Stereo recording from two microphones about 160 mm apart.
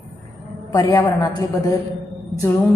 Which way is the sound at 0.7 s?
25° left (ahead or behind).